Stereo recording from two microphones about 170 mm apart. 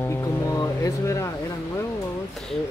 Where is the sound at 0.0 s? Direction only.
15° left (ahead or behind).